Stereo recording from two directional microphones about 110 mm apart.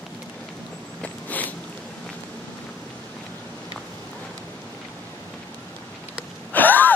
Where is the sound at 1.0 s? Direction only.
15° left (ahead or behind).